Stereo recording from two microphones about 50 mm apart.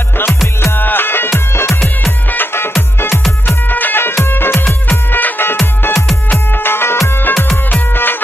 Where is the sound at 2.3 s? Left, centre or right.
Left.